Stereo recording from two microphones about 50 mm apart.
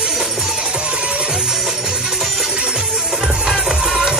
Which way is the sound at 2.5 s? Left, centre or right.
Centre.